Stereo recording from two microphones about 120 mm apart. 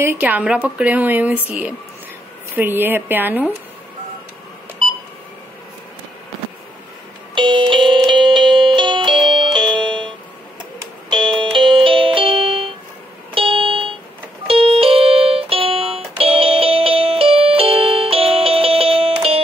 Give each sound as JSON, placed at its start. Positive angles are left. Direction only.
{"t": 0.0, "sound": "speech", "side_deg": -15}
{"t": 7.3, "sound": "music", "side_deg": -40}